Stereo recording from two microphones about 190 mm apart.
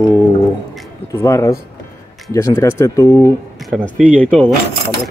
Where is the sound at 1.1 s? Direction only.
15° left (ahead or behind).